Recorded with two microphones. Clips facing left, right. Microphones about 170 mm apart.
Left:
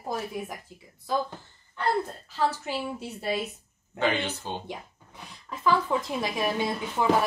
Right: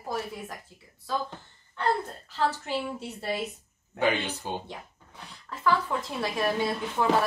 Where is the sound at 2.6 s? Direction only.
10° left (ahead or behind).